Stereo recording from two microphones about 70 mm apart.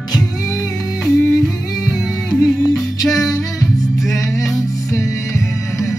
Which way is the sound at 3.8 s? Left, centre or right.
Left.